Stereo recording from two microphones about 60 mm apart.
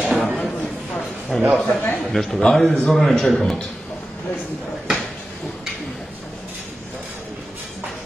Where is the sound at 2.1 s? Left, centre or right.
Centre.